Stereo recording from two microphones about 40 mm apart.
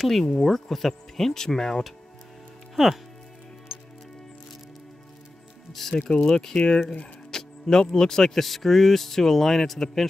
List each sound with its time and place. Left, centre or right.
0.0 s speech: centre
5.7 s speech: centre